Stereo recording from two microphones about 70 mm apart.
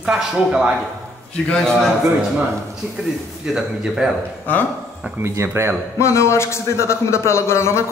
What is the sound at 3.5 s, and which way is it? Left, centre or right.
Speech, centre.